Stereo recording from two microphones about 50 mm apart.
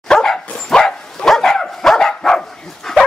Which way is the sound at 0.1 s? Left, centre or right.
Centre.